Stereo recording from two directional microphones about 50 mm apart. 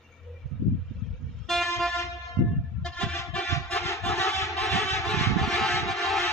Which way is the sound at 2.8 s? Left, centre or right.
Centre.